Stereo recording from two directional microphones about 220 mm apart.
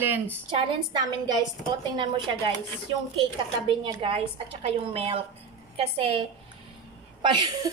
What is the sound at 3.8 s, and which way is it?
A woman's voice, 20° right (ahead or behind).